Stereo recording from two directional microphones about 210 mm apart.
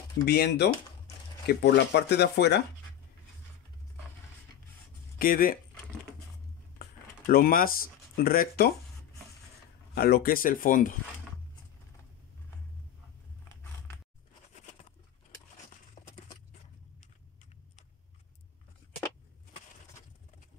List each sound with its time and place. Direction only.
0.2 s speech: 50° left (ahead or behind)
5.2 s speech: 45° left (ahead or behind)
7.2 s speech: 45° left (ahead or behind)
9.9 s speech: 45° left (ahead or behind)
14.5 s patter: 30° left (ahead or behind)
16.0 s a sound: 25° left (ahead or behind)